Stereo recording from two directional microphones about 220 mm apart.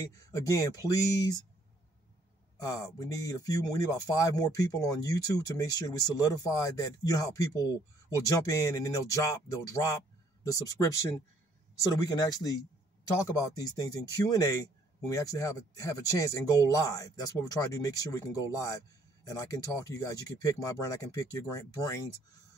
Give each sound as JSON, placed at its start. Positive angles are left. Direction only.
{"t": 0.1, "sound": "speech", "side_deg": 15}
{"t": 2.6, "sound": "speech", "side_deg": 15}